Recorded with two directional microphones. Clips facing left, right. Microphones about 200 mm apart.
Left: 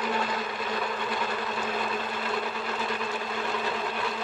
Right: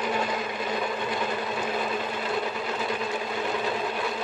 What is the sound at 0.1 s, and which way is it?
Sewing machine, 15° right (ahead or behind).